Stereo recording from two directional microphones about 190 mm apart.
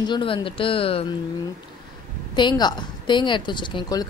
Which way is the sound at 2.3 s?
25° left (ahead or behind).